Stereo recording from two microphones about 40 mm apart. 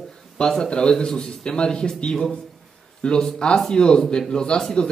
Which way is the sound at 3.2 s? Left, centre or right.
Centre.